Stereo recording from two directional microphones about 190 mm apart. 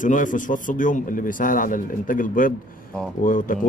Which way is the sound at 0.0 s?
45° left (ahead or behind).